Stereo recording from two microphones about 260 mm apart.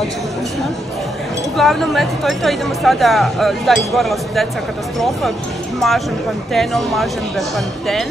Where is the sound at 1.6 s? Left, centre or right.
Centre.